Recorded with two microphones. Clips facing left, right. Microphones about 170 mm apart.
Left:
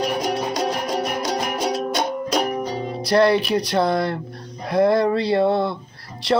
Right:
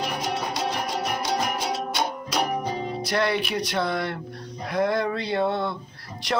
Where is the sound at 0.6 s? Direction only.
40° left (ahead or behind).